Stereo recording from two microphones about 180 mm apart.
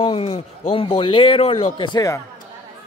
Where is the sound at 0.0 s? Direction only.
30° left (ahead or behind).